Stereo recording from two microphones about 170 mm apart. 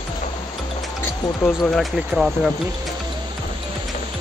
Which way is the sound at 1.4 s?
5° left (ahead or behind).